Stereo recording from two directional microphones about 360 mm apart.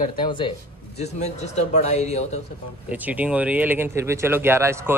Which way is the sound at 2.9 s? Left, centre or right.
Centre.